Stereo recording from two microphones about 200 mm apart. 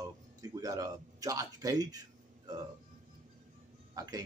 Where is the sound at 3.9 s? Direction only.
20° right (ahead or behind).